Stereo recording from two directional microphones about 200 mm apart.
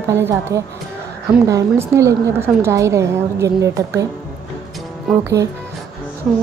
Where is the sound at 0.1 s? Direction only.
15° right (ahead or behind).